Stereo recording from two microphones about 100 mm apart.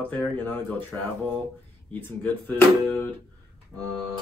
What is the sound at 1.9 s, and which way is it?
Speech, 15° left (ahead or behind).